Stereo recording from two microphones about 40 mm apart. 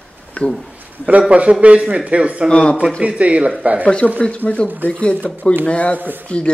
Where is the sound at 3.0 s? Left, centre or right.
Right.